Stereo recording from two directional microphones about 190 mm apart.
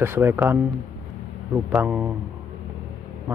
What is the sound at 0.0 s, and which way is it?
Speech, 10° right (ahead or behind).